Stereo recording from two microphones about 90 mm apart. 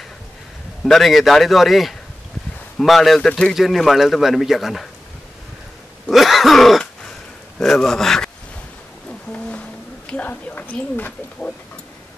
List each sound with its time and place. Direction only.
0.8 s speech: centre (ahead or behind)
6.0 s throat clearing: centre (ahead or behind)
7.5 s speech: 5° left (ahead or behind)
10.0 s speech: 15° left (ahead or behind)